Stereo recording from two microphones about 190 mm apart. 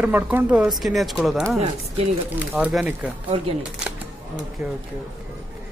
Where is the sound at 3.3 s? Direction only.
25° right (ahead or behind).